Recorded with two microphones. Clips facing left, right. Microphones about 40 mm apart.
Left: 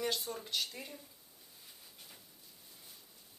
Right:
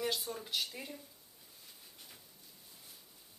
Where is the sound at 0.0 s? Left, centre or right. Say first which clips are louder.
Even; centre.